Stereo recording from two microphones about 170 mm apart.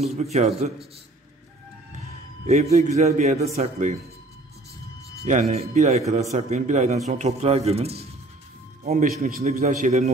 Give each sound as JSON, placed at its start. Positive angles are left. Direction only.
{"t": 0.0, "sound": "a man's voice", "side_deg": -40}
{"t": 2.4, "sound": "a man's voice", "side_deg": -40}
{"t": 5.2, "sound": "a man's voice", "side_deg": -45}
{"t": 8.8, "sound": "a man's voice", "side_deg": -45}